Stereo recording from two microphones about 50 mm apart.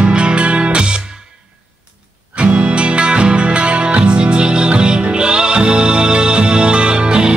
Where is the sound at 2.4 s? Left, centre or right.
Right.